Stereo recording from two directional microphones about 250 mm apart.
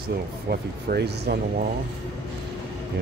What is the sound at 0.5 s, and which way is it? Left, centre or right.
Speech, right.